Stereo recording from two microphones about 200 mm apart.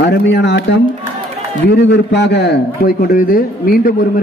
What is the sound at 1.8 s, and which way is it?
A man's voice, 60° left (ahead or behind).